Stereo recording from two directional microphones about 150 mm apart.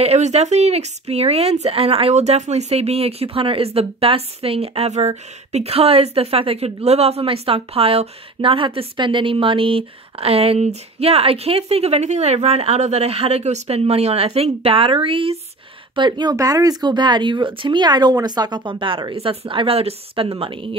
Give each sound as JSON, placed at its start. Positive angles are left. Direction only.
{"t": 0.0, "sound": "speech", "side_deg": -45}